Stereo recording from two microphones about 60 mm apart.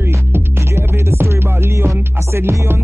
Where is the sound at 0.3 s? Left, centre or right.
Right.